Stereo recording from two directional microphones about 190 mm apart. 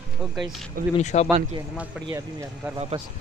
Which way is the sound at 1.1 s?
35° left (ahead or behind).